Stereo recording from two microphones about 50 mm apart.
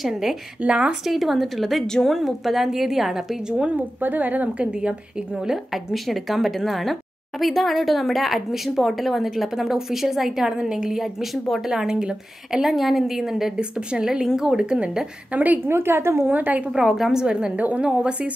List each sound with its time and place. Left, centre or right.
0.0 s a woman's voice: centre
0.6 s speech: right
1.0 s a woman's voice: centre
3.6 s a woman's voice: right
4.6 s a woman's voice: centre
13.6 s a woman's voice: centre
15.3 s a woman's voice: right
15.7 s a woman's voice: right
16.3 s a woman's voice: right
16.7 s a woman's voice: centre
17.6 s a woman's voice: right
17.8 s speech: centre